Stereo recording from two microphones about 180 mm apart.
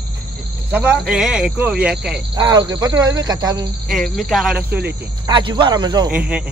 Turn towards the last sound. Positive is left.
turn(degrees=-5)  # may be behind; listen again after turning